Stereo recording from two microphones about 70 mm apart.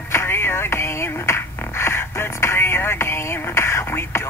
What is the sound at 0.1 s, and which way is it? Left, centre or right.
Finger snapping, left.